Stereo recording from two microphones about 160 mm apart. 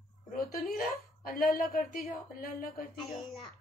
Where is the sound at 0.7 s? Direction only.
60° left (ahead or behind).